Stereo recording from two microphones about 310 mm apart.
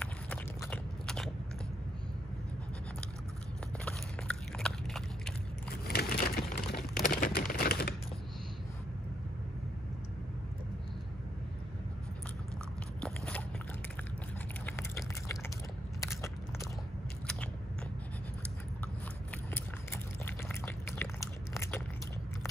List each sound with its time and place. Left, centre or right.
0.0 s biting: centre
3.8 s biting: centre
5.9 s a sound: left
13.0 s biting: centre
14.7 s a sound: centre
16.0 s biting: centre
19.5 s pour: centre